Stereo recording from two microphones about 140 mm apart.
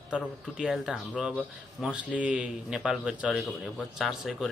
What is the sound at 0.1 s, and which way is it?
Speech, 5° right (ahead or behind).